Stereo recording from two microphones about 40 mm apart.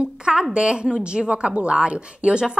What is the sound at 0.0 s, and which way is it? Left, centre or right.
A woman's voice, right.